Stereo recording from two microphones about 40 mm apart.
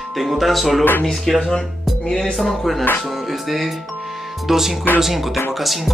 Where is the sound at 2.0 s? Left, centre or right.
Centre.